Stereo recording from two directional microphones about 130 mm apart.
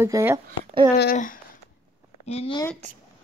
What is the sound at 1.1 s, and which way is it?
Speech, 90° left.